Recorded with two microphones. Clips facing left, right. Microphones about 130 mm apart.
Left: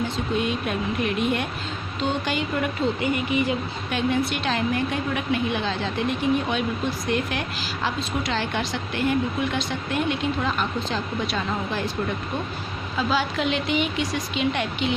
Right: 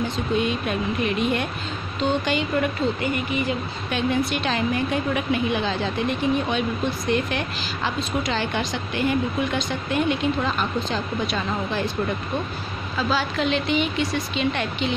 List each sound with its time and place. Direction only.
0.4 s a woman's voice: 5° left (ahead or behind)
3.0 s speech: 20° left (ahead or behind)
3.9 s a woman's voice: centre (ahead or behind)
12.9 s speech: 15° left (ahead or behind)